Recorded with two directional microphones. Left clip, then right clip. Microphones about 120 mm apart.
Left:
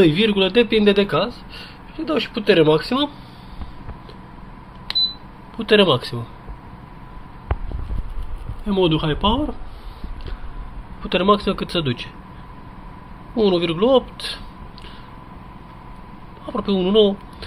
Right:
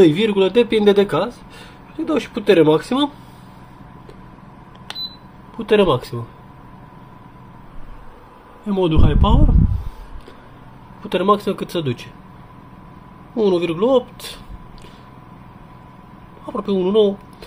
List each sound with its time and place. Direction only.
0.0 s a man's voice: 25° right (ahead or behind)
5.6 s speech: 15° right (ahead or behind)
8.6 s speech: 10° right (ahead or behind)
11.0 s speech: 15° right (ahead or behind)
13.4 s speech: 15° right (ahead or behind)
16.4 s speech: 15° right (ahead or behind)